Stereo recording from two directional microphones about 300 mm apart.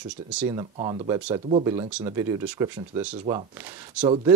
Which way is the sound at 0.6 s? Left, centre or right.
Centre.